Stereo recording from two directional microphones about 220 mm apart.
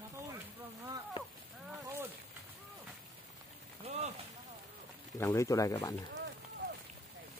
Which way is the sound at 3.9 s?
30° right (ahead or behind).